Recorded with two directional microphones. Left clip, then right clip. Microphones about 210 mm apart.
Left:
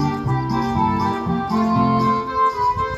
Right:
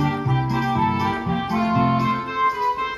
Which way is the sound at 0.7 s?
20° right (ahead or behind).